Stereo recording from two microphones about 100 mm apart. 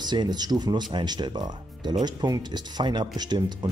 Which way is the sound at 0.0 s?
45° right (ahead or behind).